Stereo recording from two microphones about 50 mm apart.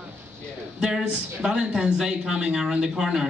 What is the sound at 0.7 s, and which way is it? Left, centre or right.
A man's voice, centre.